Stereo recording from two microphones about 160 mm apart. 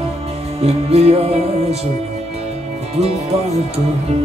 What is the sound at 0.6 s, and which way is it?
Music, 40° right (ahead or behind).